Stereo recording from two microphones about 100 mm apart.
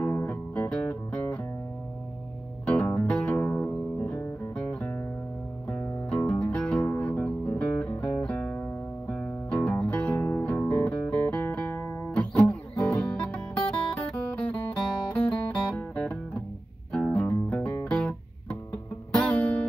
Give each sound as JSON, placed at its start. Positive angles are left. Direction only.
{"t": 0.0, "sound": "music", "side_deg": 15}
{"t": 2.6, "sound": "music", "side_deg": 10}
{"t": 13.9, "sound": "guitar", "side_deg": 15}
{"t": 15.1, "sound": "music", "side_deg": 15}
{"t": 17.8, "sound": "guitar", "side_deg": 10}